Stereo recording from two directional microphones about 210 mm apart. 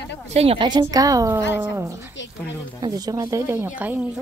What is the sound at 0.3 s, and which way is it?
A woman's voice, 30° right (ahead or behind).